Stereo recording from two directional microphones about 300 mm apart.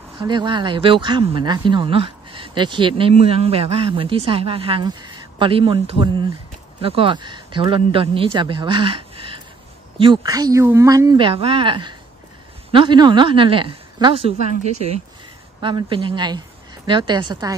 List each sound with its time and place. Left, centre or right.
0.2 s speech: centre
15.6 s a woman's voice: centre